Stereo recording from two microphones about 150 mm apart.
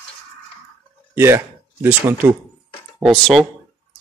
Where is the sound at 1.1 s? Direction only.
15° right (ahead or behind).